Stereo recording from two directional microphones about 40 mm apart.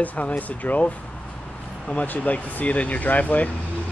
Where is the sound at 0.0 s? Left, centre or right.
Left.